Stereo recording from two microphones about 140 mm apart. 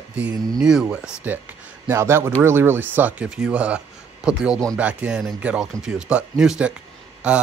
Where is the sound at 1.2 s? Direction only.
15° right (ahead or behind).